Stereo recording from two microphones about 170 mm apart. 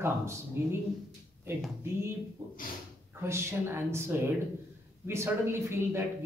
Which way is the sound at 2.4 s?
15° right (ahead or behind).